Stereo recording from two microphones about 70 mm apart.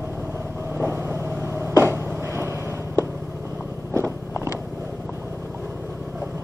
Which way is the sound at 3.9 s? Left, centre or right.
Right.